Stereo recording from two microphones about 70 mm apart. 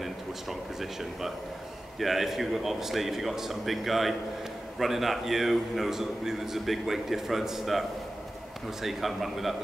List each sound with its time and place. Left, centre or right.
0.0 s a man's voice: centre
8.8 s a man's voice: centre